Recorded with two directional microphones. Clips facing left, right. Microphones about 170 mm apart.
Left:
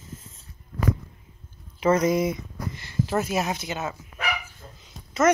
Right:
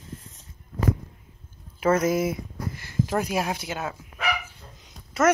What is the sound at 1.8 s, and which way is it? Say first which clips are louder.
Speech: left 1 dB; 5° right (ahead or behind).